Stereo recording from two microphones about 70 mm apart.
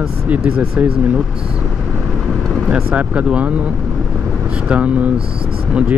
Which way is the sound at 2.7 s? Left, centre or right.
Centre.